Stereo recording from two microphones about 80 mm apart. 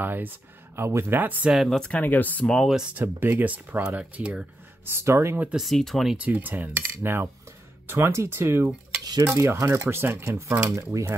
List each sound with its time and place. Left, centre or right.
0.0 s speech: right
1.5 s speech: centre
1.8 s speech: centre
2.7 s speech: centre
3.0 s speech: right
4.8 s speech: right
5.6 s speech: centre
6.1 s speech: right